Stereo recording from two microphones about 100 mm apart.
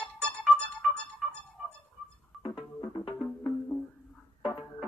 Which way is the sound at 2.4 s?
55° left (ahead or behind).